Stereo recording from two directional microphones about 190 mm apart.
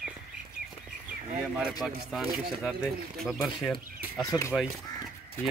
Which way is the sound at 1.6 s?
Centre (ahead or behind).